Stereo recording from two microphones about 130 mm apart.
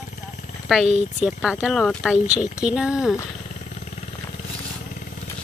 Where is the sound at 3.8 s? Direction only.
60° left (ahead or behind).